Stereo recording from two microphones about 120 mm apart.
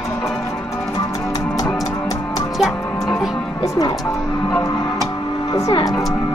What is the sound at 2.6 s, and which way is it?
Music, centre (ahead or behind).